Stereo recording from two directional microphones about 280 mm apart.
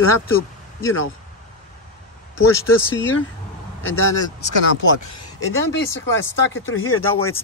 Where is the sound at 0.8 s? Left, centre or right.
Left.